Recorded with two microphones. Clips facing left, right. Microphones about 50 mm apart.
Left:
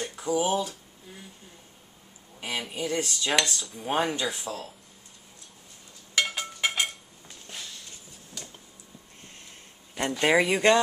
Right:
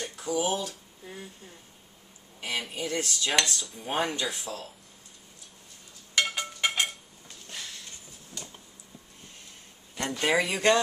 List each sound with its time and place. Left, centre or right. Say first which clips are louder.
0.1 s speech: left 3 dB; centre
2.4 s speech: left 1 dB; centre
6.1 s a sound: even; centre
9.9 s speech: left 3 dB; centre